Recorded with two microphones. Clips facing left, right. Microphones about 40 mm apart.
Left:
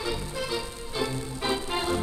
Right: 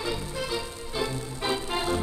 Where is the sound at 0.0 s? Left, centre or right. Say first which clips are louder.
Even; centre.